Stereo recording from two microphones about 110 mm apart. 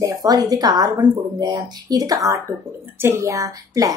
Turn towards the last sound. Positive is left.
turn(degrees=-30)  # may be behind; listen again after turning